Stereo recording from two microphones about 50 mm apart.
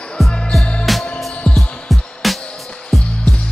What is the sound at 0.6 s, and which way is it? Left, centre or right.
Music, left.